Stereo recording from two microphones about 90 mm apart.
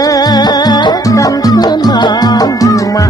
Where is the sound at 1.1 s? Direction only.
40° left (ahead or behind).